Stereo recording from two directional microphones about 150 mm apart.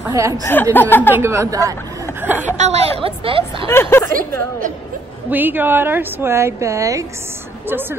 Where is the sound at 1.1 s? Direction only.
20° right (ahead or behind).